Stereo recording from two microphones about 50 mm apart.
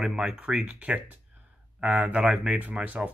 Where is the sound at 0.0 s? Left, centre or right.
Centre.